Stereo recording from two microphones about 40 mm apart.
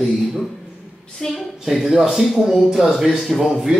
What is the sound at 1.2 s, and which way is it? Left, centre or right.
Speech, centre.